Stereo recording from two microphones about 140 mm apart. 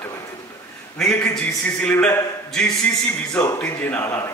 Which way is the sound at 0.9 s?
5° left (ahead or behind).